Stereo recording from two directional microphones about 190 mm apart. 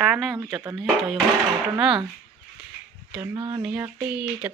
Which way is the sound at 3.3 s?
20° right (ahead or behind).